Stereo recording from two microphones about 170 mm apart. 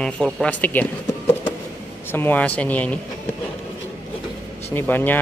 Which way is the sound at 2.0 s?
10° left (ahead or behind).